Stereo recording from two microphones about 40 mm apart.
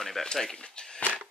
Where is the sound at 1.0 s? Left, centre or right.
Left.